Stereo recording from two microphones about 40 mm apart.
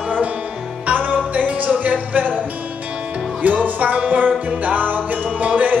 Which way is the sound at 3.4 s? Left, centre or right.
Right.